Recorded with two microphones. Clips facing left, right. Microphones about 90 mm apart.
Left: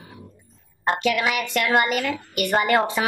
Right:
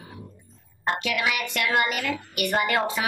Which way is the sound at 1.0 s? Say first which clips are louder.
Left 4 dB; 40° left (ahead or behind).